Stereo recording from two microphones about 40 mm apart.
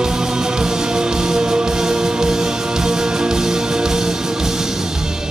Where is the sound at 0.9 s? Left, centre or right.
Centre.